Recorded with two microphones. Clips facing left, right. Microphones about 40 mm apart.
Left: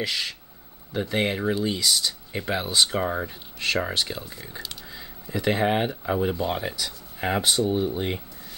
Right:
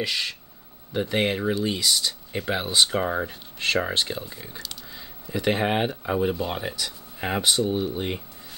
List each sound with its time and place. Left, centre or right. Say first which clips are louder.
0.0 s speech: right 1 dB; centre
3.5 s speech: right 1 dB; centre
4.1 s speech: right 1 dB; centre
7.7 s speech: left 1 dB; centre